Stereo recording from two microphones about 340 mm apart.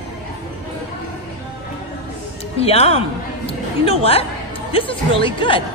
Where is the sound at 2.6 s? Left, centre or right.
Centre.